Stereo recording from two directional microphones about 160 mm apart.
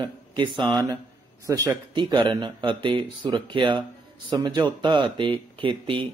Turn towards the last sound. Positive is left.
turn(degrees=-30)  # may be behind; listen again after turning